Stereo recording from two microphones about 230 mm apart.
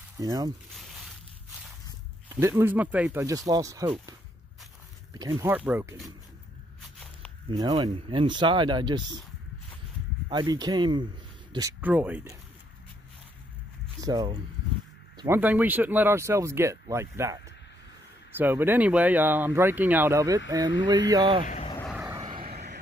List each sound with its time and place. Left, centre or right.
0.2 s speech: centre
2.4 s speech: centre
5.1 s speech: centre
6.8 s a sound: centre
7.5 s speech: centre
10.3 s speech: centre
14.0 s speech: centre
21.5 s vehicle: left
22.4 s vehicle: right